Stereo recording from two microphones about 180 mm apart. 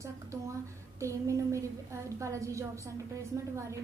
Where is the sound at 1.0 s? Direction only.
15° right (ahead or behind).